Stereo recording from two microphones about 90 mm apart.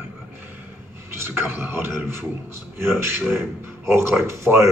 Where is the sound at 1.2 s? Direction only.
25° right (ahead or behind).